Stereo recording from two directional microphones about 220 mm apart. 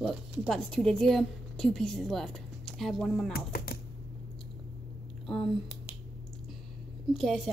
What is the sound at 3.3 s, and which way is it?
Speech, 45° left (ahead or behind).